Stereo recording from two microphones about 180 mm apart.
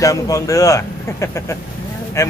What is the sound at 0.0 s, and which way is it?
A man's voice, 20° left (ahead or behind).